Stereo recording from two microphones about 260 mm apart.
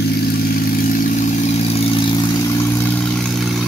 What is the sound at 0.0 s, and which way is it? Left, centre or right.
Vehicle, left.